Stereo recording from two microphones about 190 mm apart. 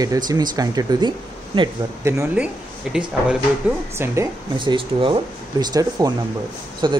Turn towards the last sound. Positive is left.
turn(degrees=-25)  # may be behind; listen again after turning